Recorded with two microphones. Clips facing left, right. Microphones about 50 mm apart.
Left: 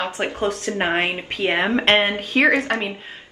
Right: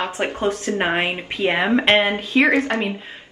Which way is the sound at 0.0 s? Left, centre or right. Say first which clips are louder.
Right 1 dB; right.